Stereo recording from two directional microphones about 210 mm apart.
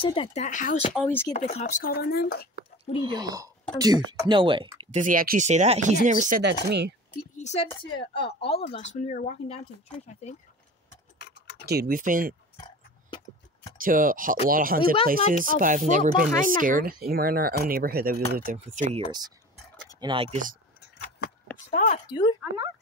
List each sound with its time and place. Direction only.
0.0 s speech: 25° left (ahead or behind)
0.9 s speech: 10° left (ahead or behind)
1.3 s speech: 30° left (ahead or behind)
1.9 s speech: 50° left (ahead or behind)
3.0 s speech: 20° right (ahead or behind)
5.0 s speech: 40° right (ahead or behind)
6.4 s speech: 55° right (ahead or behind)
7.3 s speech: 30° left (ahead or behind)
11.1 s tick-tock: 55° left (ahead or behind)
11.6 s speech: 45° right (ahead or behind)
13.7 s speech: 40° right (ahead or behind); by 20.3 s 25° right (ahead or behind)
21.6 s speech: 35° left (ahead or behind)
22.4 s speech: 5° right (ahead or behind)